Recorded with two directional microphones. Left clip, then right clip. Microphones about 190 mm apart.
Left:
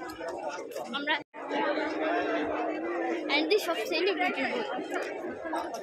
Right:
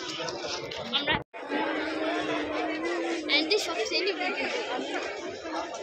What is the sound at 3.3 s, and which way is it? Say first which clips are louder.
Chatter: right 1 dB; 45° left (ahead or behind).